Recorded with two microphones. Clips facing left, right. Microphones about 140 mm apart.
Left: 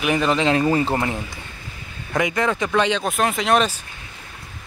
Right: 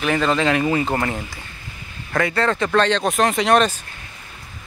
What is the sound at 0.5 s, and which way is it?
Speech, 30° left (ahead or behind).